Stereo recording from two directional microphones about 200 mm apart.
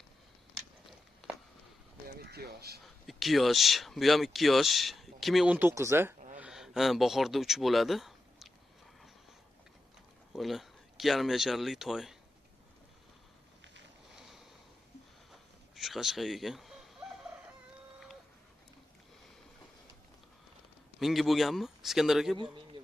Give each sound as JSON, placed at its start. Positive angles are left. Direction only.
{"t": 1.2, "sound": "a sound", "side_deg": 0}
{"t": 2.0, "sound": "a sound", "side_deg": -50}
{"t": 3.1, "sound": "speech", "side_deg": 0}
{"t": 6.4, "sound": "speech", "side_deg": 0}
{"t": 10.3, "sound": "speech", "side_deg": 0}
{"t": 15.7, "sound": "speech", "side_deg": 0}
{"t": 21.0, "sound": "speech", "side_deg": 0}